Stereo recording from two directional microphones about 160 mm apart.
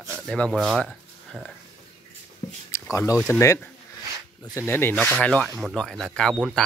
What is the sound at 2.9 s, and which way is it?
Speech, 20° left (ahead or behind).